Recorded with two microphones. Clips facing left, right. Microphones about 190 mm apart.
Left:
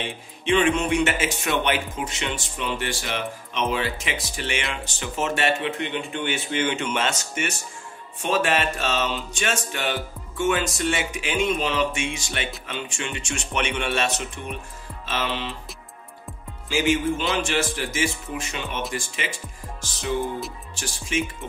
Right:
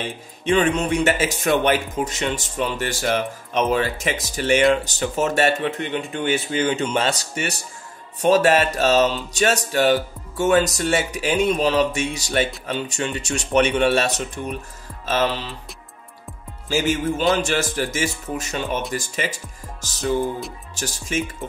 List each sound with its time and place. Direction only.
0.0 s music: 40° right (ahead or behind)
1.6 s speech: 40° right (ahead or behind)
4.8 s music: 40° right (ahead or behind)
16.6 s music: 40° right (ahead or behind)
20.7 s speech: 40° right (ahead or behind)